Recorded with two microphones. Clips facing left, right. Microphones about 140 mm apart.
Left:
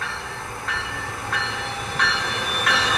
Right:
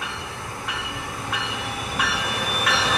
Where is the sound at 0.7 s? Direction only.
15° right (ahead or behind).